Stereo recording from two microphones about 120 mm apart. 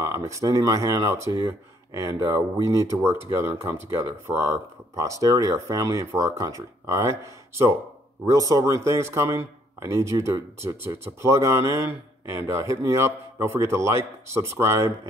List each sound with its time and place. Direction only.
0.0 s speech: 25° right (ahead or behind)